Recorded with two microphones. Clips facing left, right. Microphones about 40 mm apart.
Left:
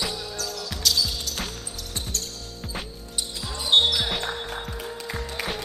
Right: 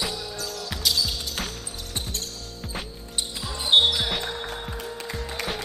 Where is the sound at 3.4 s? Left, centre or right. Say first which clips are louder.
Right 1 dB; centre.